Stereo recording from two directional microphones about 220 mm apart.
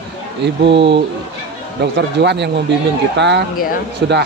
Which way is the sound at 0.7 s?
50° right (ahead or behind).